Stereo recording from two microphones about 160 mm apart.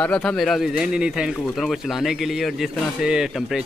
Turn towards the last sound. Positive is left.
turn(degrees=-5)  # may be behind; listen again after turning